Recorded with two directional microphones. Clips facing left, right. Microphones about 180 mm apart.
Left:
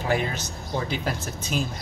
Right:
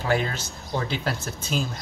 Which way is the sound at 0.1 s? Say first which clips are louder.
Right 1 dB; 15° left (ahead or behind).